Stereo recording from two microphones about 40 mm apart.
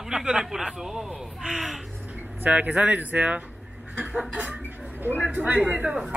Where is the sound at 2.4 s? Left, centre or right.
Right.